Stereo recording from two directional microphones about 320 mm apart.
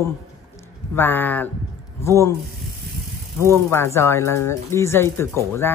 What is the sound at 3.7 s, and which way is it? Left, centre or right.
Speech, centre.